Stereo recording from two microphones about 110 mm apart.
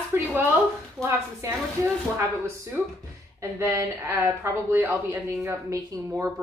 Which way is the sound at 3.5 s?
25° right (ahead or behind).